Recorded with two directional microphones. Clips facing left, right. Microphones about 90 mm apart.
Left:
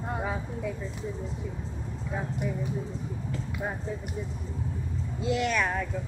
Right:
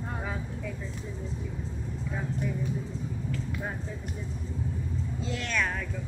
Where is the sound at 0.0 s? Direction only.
10° left (ahead or behind).